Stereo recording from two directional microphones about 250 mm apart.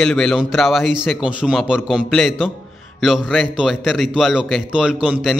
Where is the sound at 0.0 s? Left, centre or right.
Centre.